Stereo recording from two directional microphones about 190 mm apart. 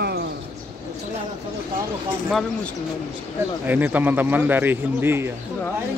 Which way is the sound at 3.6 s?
10° right (ahead or behind).